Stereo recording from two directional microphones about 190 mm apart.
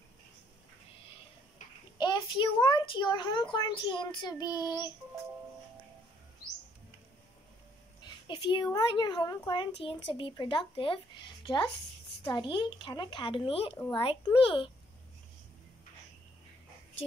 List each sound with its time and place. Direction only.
2.0 s speech: 25° left (ahead or behind)
8.0 s speech: 25° left (ahead or behind)